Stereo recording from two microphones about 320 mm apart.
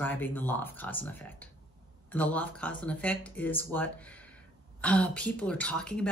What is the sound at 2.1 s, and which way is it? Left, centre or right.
Speech, centre.